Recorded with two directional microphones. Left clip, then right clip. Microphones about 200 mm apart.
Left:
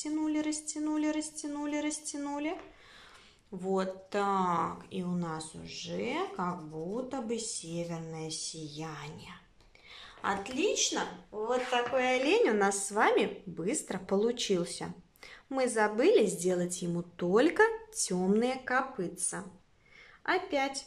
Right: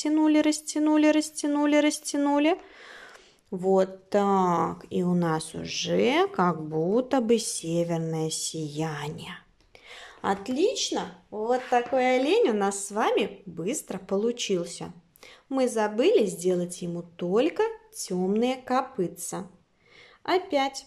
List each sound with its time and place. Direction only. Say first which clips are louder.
0.0 s speech: right 11 dB; 40° right (ahead or behind)
3.6 s a woman's voice: right 9 dB; 30° right (ahead or behind)